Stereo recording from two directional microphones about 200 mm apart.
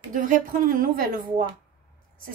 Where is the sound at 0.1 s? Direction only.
40° right (ahead or behind).